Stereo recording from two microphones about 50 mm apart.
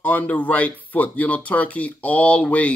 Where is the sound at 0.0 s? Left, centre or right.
Left.